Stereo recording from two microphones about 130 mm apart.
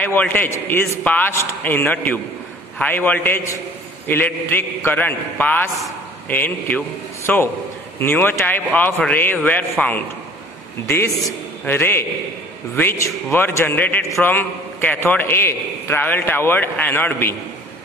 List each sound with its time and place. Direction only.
0.0 s a man's voice: 15° left (ahead or behind)